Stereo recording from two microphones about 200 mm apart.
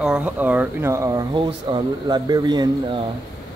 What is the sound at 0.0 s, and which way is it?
Speech, 5° right (ahead or behind).